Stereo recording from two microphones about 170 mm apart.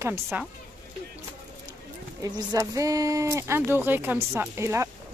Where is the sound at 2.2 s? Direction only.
20° right (ahead or behind).